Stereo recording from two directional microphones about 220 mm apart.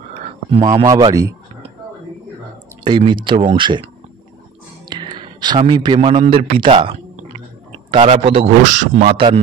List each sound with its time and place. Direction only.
0.2 s a sound: 30° right (ahead or behind)
0.8 s a man's voice: 15° right (ahead or behind)
2.8 s a man's voice: 20° right (ahead or behind)
8.0 s a man's voice: 25° right (ahead or behind)